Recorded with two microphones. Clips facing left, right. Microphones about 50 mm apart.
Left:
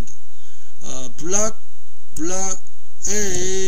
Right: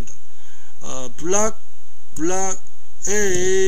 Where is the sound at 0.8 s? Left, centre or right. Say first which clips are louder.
Right 3 dB; right.